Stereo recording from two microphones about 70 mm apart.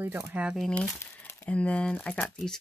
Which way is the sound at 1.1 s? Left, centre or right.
Left.